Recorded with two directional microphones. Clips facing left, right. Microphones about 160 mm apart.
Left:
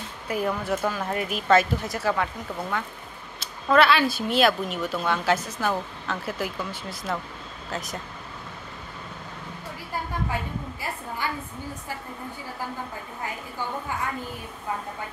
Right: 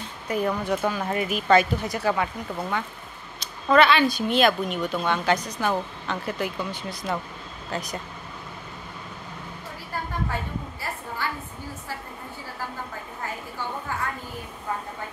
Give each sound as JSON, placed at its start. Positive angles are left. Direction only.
{"t": 0.3, "sound": "speech", "side_deg": 5}
{"t": 3.3, "sound": "speech", "side_deg": 0}
{"t": 11.2, "sound": "a sound", "side_deg": 15}